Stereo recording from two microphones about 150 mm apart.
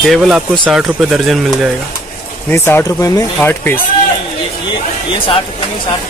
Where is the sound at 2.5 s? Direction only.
15° left (ahead or behind).